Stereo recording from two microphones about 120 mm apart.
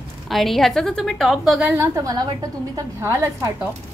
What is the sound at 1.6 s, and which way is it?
A woman's voice, 20° right (ahead or behind).